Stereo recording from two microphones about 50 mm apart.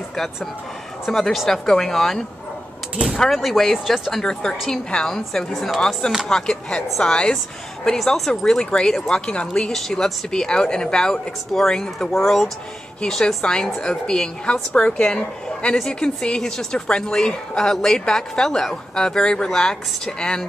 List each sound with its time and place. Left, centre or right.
1.0 s speech: centre
3.3 s speech: centre
4.2 s speech: centre
9.7 s speech: centre
10.3 s speech: centre